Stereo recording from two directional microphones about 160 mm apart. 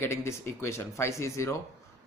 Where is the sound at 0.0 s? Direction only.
15° left (ahead or behind).